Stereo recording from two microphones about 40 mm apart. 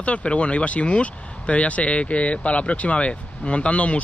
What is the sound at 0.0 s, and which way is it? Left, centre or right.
Speech, left.